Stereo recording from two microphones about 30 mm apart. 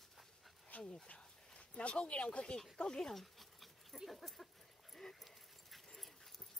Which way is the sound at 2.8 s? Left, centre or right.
Centre.